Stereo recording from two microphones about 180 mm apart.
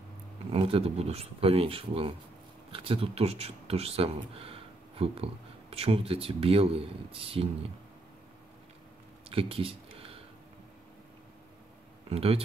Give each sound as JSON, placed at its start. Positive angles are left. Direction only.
{"t": 0.5, "sound": "speech", "side_deg": -30}
{"t": 9.3, "sound": "a sound", "side_deg": -30}
{"t": 12.1, "sound": "speech", "side_deg": -35}